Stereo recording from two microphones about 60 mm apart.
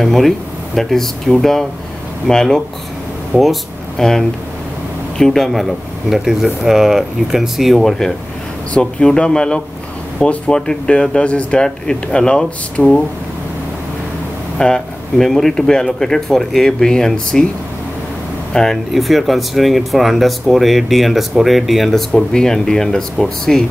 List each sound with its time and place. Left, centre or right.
0.0 s speech: centre
3.3 s speech: right
4.0 s speech: centre
8.7 s speech: centre
14.6 s speech: centre
18.5 s speech: centre